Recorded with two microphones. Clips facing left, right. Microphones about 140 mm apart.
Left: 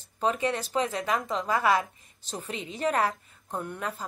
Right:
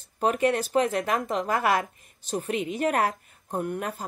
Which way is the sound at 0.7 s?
55° right (ahead or behind).